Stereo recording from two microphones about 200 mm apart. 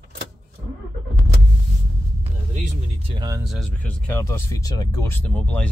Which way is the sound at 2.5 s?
30° right (ahead or behind).